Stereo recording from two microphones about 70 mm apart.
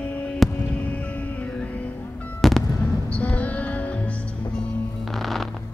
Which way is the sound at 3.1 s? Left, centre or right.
Centre.